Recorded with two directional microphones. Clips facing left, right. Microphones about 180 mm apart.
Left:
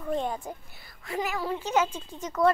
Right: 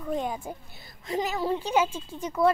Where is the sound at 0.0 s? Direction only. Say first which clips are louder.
Even; 5° right (ahead or behind).